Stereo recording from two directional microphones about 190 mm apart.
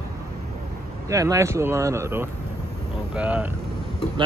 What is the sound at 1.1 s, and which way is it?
Speech, 15° right (ahead or behind).